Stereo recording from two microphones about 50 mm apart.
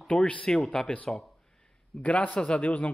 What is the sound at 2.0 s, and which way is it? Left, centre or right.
Speech, left.